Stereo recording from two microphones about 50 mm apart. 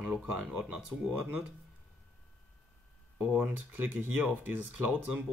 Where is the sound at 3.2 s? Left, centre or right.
Right.